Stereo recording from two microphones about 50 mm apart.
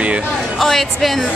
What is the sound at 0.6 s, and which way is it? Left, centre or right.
Speech, centre.